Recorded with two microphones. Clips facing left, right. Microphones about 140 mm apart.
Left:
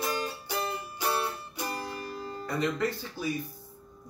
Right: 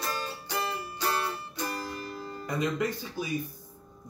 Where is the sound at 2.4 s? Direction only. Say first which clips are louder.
Even; 15° right (ahead or behind).